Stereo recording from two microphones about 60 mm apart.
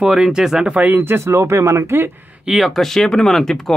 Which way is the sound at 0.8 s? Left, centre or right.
Right.